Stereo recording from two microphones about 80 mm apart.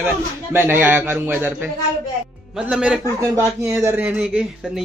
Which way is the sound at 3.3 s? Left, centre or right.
Right.